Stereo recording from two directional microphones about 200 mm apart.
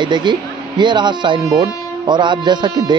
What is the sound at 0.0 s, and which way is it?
Speech, 20° right (ahead or behind).